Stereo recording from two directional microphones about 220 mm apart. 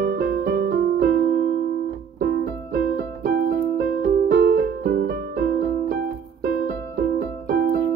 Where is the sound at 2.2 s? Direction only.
45° right (ahead or behind).